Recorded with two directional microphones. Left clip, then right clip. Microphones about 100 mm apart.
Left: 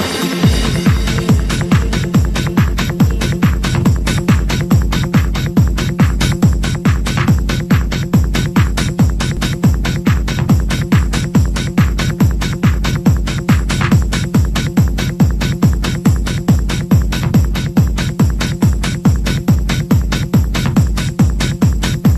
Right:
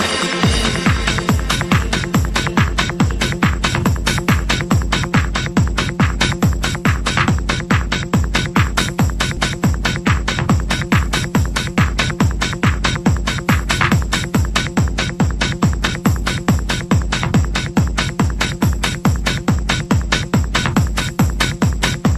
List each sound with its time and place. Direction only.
0.0 s music: 20° right (ahead or behind)